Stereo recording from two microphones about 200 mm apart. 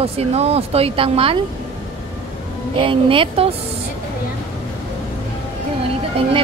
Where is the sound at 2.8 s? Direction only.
25° right (ahead or behind).